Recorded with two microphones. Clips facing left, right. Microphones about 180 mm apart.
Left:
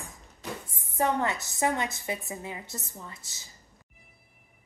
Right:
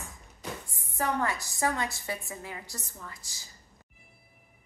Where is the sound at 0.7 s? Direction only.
20° left (ahead or behind).